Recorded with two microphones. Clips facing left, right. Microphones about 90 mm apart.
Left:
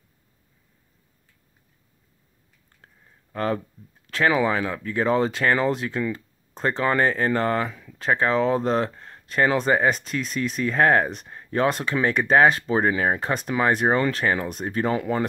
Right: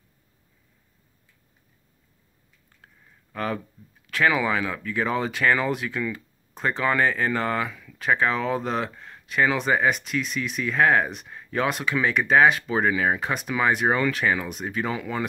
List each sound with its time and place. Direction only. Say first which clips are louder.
3.3 s speech: left 3 dB; 30° left (ahead or behind)